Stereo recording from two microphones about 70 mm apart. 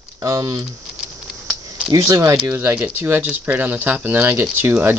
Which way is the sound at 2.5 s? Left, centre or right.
Right.